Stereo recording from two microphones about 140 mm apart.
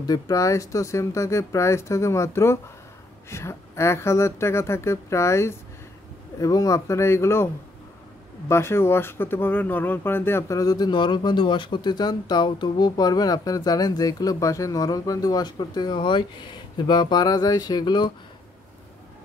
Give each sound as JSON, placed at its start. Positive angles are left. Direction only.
{"t": 0.0, "sound": "speech", "side_deg": 25}
{"t": 8.5, "sound": "speech", "side_deg": 20}